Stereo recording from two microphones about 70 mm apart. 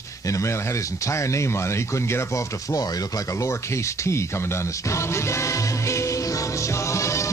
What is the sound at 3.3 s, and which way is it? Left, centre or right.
Music, left.